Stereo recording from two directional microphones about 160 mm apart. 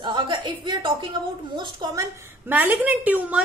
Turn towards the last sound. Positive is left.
turn(degrees=-10)  # may be behind; listen again after turning